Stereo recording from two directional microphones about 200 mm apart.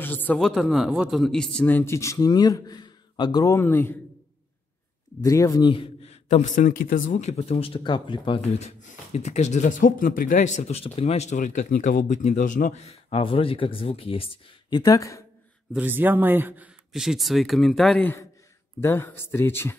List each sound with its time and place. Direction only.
0.0 s a man's voice: 10° left (ahead or behind)
5.2 s a man's voice: 15° left (ahead or behind)
6.2 s speech: 40° left (ahead or behind)
14.8 s a man's voice: 15° left (ahead or behind)
15.7 s a man's voice: 10° right (ahead or behind); by 19.8 s 10° left (ahead or behind)